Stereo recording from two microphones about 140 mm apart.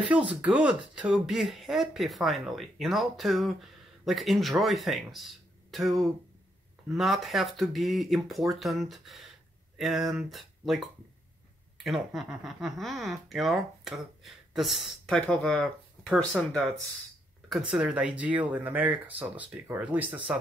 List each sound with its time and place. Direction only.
0.3 s speech: 10° right (ahead or behind)